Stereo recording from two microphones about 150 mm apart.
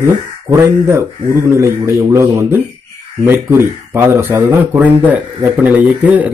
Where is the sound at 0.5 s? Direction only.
20° right (ahead or behind).